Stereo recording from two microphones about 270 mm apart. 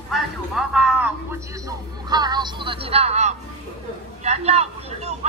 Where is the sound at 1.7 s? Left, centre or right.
Centre.